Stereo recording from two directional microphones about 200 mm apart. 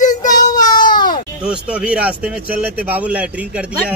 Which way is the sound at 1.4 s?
5° right (ahead or behind).